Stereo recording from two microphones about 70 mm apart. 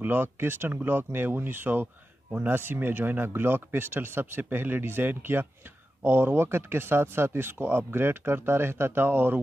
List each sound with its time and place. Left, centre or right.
0.0 s speech: right